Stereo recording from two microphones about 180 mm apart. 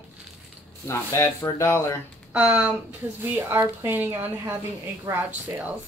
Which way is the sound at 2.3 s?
5° right (ahead or behind).